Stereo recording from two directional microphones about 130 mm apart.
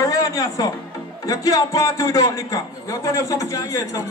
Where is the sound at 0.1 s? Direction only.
30° left (ahead or behind).